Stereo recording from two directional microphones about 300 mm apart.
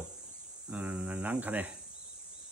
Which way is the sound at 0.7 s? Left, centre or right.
Centre.